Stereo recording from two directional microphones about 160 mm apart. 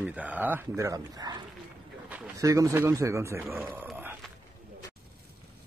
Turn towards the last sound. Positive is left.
turn(degrees=-10)  # may be behind; listen again after turning